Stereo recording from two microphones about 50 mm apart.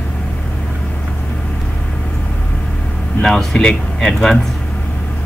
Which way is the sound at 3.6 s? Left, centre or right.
Centre.